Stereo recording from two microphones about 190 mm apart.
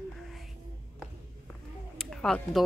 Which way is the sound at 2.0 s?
5° left (ahead or behind).